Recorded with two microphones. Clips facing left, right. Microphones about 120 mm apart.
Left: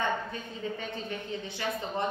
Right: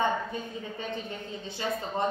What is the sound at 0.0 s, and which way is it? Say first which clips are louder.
A woman's voice: right 3 dB; 15° right (ahead or behind).